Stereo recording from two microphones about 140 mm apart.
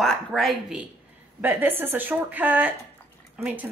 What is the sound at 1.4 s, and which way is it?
Speech, 15° right (ahead or behind).